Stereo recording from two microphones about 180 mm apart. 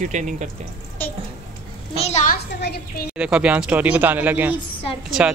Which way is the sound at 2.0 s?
40° left (ahead or behind).